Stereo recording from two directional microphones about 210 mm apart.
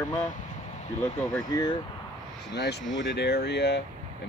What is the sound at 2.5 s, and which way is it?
Speech, 55° left (ahead or behind).